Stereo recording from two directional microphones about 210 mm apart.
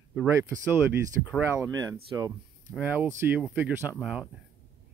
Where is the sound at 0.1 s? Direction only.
10° right (ahead or behind).